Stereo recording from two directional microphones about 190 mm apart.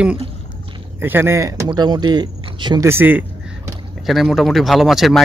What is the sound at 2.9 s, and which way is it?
Speech, 10° right (ahead or behind).